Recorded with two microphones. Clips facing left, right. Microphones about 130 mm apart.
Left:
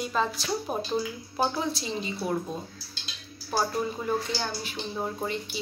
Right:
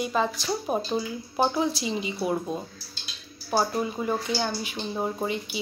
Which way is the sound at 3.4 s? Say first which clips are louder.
Right 2 dB; 20° right (ahead or behind).